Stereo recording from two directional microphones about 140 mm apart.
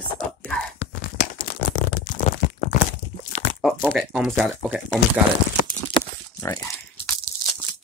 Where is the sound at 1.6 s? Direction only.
75° left (ahead or behind).